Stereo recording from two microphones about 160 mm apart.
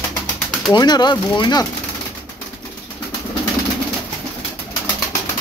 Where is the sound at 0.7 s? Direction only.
25° left (ahead or behind).